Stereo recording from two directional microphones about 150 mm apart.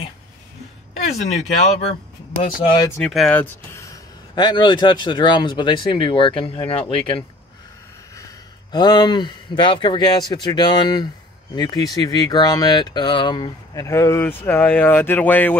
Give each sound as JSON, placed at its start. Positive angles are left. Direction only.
{"t": 1.1, "sound": "speech", "side_deg": 50}
{"t": 3.0, "sound": "speech", "side_deg": 5}
{"t": 8.7, "sound": "speech", "side_deg": 30}
{"t": 13.8, "sound": "speech", "side_deg": 15}